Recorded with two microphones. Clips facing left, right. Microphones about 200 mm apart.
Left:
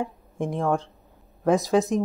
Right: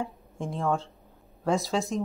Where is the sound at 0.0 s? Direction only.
20° left (ahead or behind).